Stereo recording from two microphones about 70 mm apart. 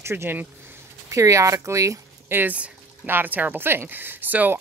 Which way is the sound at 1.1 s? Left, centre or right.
Right.